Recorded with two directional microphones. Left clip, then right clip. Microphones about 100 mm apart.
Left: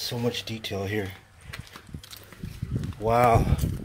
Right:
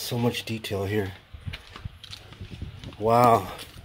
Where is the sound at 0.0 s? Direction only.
75° right (ahead or behind).